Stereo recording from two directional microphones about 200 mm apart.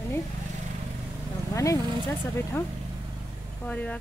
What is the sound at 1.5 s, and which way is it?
Vehicle, 15° left (ahead or behind).